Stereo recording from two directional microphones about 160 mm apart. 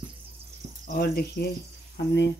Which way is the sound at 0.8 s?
75° left (ahead or behind).